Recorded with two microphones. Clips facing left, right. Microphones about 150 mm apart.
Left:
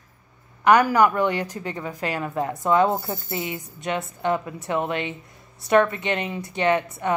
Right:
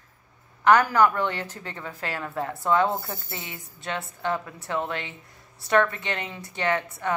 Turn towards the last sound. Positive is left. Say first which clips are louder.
# left 4 dB
turn(degrees=20)  # may be behind; listen again after turning